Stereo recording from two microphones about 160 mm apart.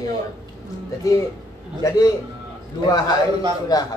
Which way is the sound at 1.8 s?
20° left (ahead or behind).